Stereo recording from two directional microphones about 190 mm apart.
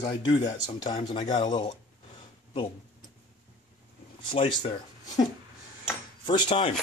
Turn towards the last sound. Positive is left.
turn(degrees=25)  # may be behind; listen again after turning